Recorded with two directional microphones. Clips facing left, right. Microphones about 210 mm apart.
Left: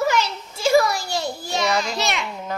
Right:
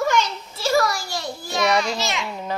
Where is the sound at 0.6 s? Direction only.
15° left (ahead or behind).